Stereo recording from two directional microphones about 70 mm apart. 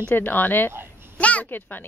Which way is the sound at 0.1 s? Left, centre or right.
Left.